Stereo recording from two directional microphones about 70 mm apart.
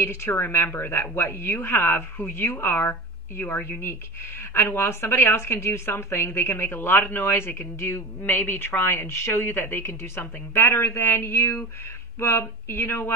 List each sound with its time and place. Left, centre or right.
0.0 s a woman's voice: left